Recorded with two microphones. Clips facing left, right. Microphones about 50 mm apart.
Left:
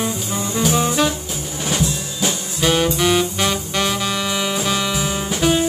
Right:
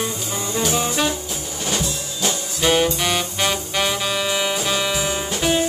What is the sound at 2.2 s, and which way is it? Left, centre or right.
Saxophone, centre.